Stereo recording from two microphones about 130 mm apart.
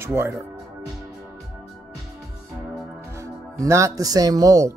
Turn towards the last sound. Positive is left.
turn(degrees=-25)  # may be behind; listen again after turning